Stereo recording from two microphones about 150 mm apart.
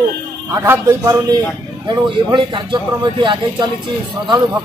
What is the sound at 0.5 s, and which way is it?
Speech, 15° right (ahead or behind).